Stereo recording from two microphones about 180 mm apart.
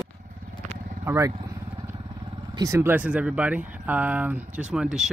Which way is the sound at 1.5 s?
15° right (ahead or behind).